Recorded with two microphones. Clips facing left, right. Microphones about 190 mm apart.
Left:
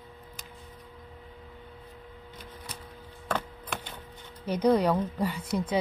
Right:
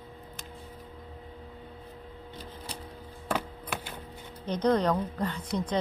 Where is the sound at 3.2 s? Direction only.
10° right (ahead or behind).